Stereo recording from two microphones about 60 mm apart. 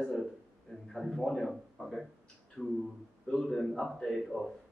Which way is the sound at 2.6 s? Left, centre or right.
Centre.